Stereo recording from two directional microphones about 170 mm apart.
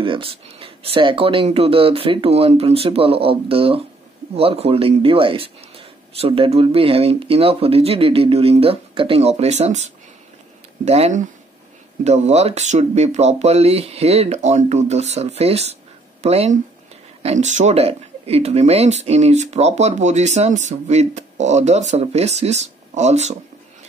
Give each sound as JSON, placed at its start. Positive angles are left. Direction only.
{"t": 0.0, "sound": "speech", "side_deg": -30}
{"t": 10.9, "sound": "speech", "side_deg": -40}